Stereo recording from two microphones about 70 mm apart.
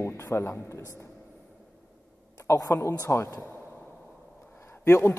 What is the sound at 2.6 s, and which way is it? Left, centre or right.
Speech, left.